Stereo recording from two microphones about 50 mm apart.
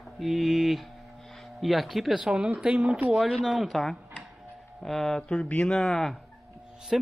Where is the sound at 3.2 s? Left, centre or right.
Centre.